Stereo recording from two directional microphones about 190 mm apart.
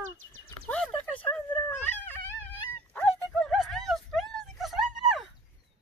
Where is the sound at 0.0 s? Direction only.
90° right.